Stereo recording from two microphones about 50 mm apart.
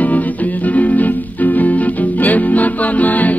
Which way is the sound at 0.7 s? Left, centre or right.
Left.